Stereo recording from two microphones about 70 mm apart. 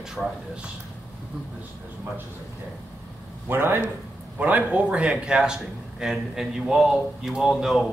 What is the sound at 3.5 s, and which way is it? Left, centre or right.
Speech, right.